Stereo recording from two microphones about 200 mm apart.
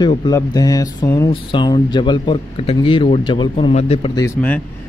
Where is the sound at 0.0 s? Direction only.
20° left (ahead or behind).